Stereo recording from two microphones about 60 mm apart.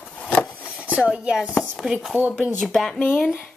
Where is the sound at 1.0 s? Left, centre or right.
Centre.